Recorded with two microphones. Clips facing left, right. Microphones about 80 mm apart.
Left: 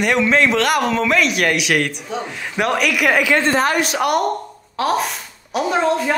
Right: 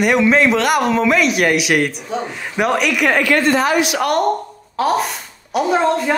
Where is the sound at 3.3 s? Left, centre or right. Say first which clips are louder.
Right 2 dB; left.